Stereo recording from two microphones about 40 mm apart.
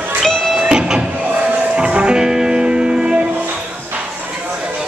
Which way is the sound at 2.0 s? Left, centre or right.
Right.